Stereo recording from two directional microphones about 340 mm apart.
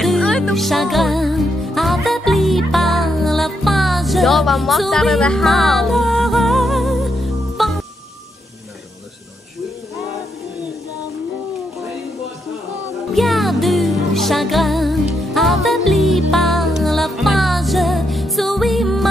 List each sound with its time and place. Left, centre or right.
0.0 s music: centre
13.1 s music: centre